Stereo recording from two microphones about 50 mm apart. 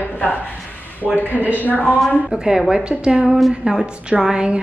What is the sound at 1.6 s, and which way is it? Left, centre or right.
Speech, left.